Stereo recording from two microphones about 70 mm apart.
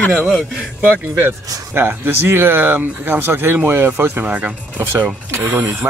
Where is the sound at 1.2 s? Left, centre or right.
Right.